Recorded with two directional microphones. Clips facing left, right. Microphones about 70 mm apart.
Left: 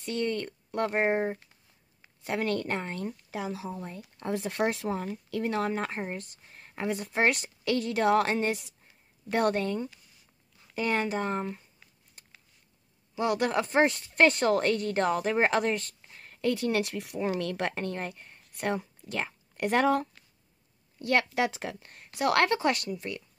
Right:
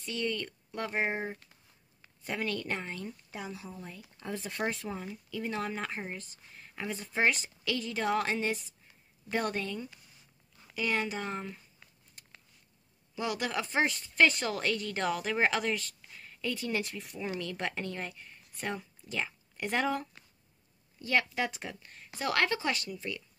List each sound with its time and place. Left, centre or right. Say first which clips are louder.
0.0 s a woman's voice: left 4 dB; left
2.2 s a woman's voice: left 5 dB; left
3.3 s speech: left 7 dB; left
3.8 s speech: left 6 dB; left
5.7 s speech: left 5 dB; left
6.5 s a sound: left 5 dB; left
6.9 s a woman's voice: left 3 dB; left
13.2 s a woman's voice: left 6 dB; left
21.0 s a woman's voice: left 4 dB; left